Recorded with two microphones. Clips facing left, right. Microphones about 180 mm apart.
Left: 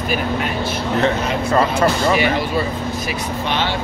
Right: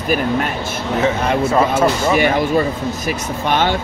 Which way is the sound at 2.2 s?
50° right (ahead or behind).